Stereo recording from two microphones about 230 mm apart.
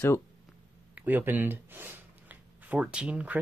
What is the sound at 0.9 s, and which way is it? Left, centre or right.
Speech, centre.